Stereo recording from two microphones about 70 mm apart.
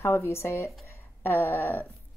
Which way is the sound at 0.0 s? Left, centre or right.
Left.